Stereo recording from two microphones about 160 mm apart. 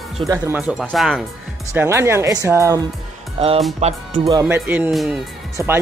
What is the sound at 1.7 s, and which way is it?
Speech, 15° right (ahead or behind).